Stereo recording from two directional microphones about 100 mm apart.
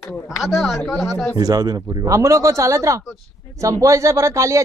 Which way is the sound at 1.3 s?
40° right (ahead or behind).